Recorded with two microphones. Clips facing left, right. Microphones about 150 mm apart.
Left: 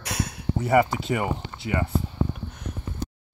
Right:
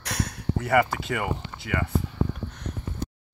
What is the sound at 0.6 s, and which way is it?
Speech, 15° left (ahead or behind).